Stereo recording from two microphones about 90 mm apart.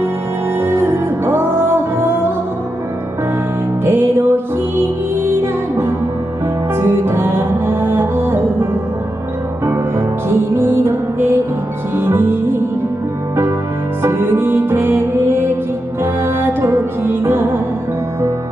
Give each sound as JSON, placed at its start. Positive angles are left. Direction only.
{"t": 0.6, "sound": "music", "side_deg": -25}
{"t": 3.8, "sound": "music", "side_deg": -20}
{"t": 6.8, "sound": "music", "side_deg": -25}
{"t": 9.9, "sound": "music", "side_deg": -20}
{"t": 14.0, "sound": "music", "side_deg": -25}